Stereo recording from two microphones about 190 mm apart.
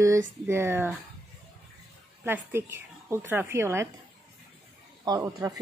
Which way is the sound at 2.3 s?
10° right (ahead or behind).